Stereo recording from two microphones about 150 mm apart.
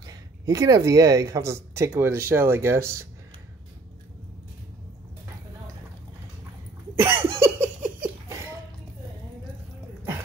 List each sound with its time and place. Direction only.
0.0 s speech: 20° right (ahead or behind)
7.0 s a sound: 15° right (ahead or behind)
7.3 s laughter: 15° right (ahead or behind)